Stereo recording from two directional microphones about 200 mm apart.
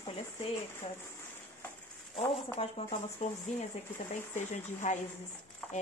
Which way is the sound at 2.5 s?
30° left (ahead or behind).